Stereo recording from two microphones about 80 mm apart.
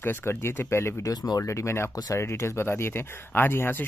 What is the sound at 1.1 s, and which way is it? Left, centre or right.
Speech, left.